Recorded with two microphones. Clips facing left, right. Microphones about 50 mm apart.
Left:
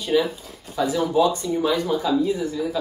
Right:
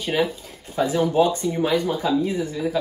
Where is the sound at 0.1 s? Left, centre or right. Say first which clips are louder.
Left 4 dB; right.